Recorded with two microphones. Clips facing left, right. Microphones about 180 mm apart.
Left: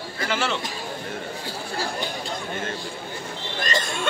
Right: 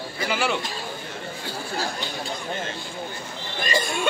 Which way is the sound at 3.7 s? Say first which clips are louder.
Right 3 dB; 5° right (ahead or behind).